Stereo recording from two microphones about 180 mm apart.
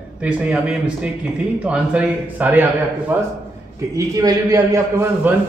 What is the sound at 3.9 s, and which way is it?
A man's voice, 20° right (ahead or behind).